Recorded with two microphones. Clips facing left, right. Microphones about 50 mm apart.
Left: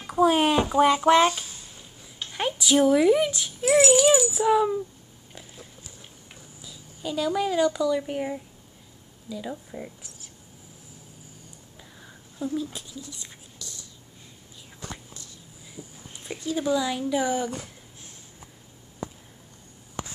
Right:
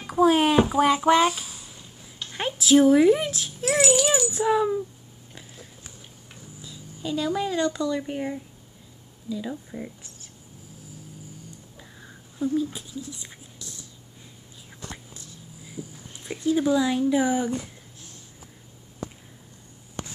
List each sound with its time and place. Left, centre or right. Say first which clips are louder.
0.0 s a child's voice: right 1 dB; centre
6.6 s dog: right 1 dB; centre
7.4 s a child's voice: left 2 dB; centre
9.7 s a child's voice: right 2 dB; centre
11.7 s a sound: right 2 dB; centre
13.1 s whispering: right 2 dB; centre
15.8 s a sound: right 5 dB; centre
16.3 s a sound: right 6 dB; right
16.7 s speech: right 3 dB; centre